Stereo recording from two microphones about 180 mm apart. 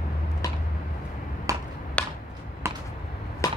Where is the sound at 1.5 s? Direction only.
20° right (ahead or behind).